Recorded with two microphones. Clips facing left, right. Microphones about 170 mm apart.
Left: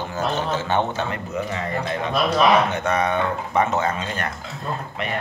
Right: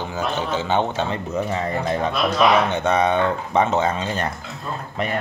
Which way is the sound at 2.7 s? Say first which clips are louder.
Right 3 dB; 25° right (ahead or behind).